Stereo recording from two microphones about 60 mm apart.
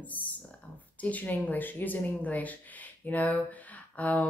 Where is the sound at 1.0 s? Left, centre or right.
Left.